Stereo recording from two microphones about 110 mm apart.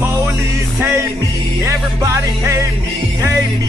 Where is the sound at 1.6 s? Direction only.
30° right (ahead or behind).